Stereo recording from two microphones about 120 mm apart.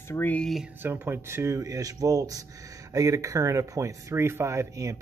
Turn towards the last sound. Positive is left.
turn(degrees=-30)  # may be behind; listen again after turning